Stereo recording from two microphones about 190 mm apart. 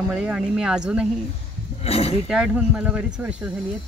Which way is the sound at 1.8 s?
30° left (ahead or behind).